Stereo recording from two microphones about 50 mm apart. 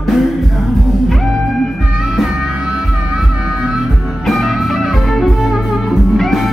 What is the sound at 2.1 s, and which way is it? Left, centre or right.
Music, centre.